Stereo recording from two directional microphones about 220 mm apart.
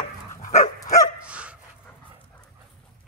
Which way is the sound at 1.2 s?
5° right (ahead or behind).